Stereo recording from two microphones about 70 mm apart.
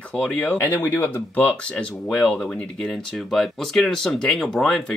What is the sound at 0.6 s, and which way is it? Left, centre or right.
Speech, left.